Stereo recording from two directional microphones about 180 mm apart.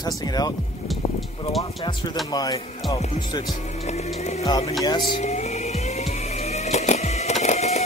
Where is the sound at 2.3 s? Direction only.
20° left (ahead or behind).